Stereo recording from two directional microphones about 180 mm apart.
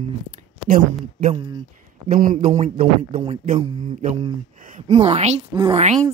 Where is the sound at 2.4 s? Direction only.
40° right (ahead or behind).